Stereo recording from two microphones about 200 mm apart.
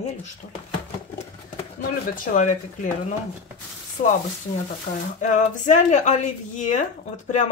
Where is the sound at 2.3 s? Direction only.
40° left (ahead or behind).